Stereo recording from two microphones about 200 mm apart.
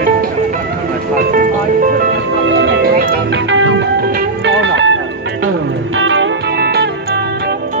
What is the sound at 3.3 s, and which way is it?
Music, 70° right (ahead or behind).